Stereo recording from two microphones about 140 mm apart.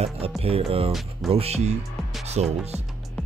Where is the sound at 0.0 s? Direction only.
45° right (ahead or behind).